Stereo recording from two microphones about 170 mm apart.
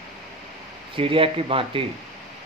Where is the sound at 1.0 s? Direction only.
30° right (ahead or behind).